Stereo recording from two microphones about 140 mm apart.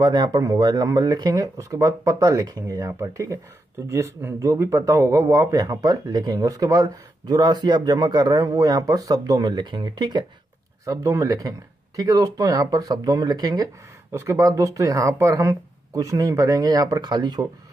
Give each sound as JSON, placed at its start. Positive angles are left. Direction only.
{"t": 0.0, "sound": "speech", "side_deg": -30}